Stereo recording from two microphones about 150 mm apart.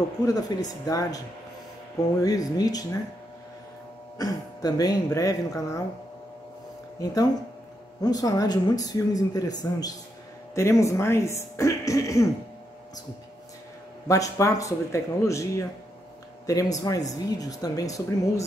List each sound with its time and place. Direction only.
0.3 s speech: 25° left (ahead or behind)
2.2 s speech: 25° left (ahead or behind)
4.2 s speech: 25° left (ahead or behind)
8.0 s speech: 25° left (ahead or behind)
14.0 s speech: 20° left (ahead or behind)